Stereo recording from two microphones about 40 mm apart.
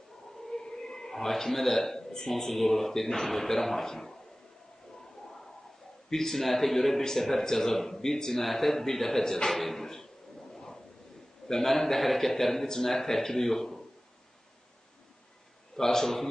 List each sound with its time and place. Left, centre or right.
0.5 s a sound: centre
2.0 s speech: centre
6.0 s a man's voice: centre
10.5 s a sound: centre
11.4 s a man's voice: centre
15.7 s speech: centre